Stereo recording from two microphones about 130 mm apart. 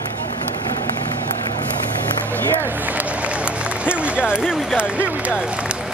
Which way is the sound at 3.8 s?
10° right (ahead or behind).